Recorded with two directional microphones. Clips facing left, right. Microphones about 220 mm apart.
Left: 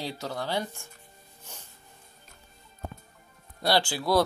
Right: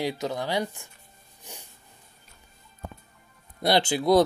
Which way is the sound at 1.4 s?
15° right (ahead or behind).